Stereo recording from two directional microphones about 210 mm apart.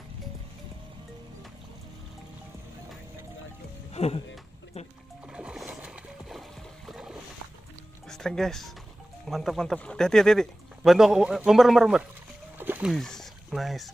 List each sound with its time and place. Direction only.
3.9 s a sound: 30° left (ahead or behind)
4.7 s music: 30° left (ahead or behind)
5.2 s splash: 5° right (ahead or behind)
8.1 s speech: centre (ahead or behind)
12.5 s music: 10° right (ahead or behind)
12.9 s speech: centre (ahead or behind)